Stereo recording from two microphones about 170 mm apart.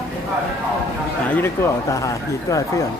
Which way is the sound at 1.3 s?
15° left (ahead or behind).